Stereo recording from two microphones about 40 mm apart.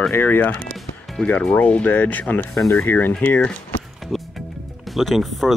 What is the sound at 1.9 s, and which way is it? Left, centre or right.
Speech, left.